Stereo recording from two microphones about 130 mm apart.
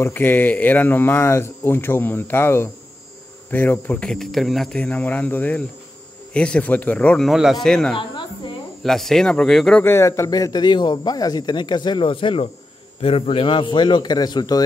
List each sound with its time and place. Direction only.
0.0 s speech: 15° left (ahead or behind)
7.9 s music: 40° left (ahead or behind)
8.8 s speech: centre (ahead or behind)
9.8 s a man's voice: 20° left (ahead or behind)